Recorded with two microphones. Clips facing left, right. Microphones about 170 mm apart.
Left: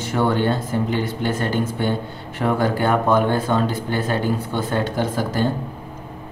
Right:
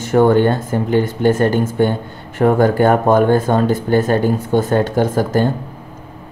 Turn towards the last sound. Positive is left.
turn(degrees=-50)  # may be behind; listen again after turning